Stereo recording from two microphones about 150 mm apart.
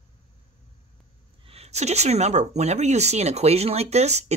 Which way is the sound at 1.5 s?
45° right (ahead or behind).